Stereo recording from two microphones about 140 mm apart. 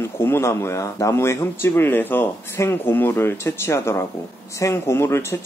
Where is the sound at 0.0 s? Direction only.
15° left (ahead or behind).